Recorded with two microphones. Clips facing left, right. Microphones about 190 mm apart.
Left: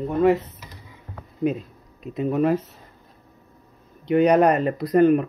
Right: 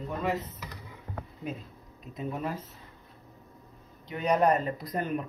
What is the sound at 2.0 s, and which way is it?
Speech, 75° left (ahead or behind).